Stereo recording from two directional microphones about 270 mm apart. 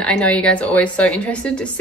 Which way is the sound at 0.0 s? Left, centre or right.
Centre.